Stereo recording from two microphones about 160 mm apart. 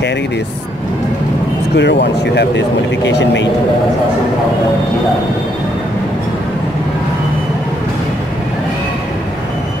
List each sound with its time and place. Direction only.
1.8 s speech: 90° left